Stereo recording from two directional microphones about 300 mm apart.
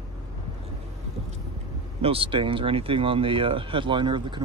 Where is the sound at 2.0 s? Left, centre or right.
Centre.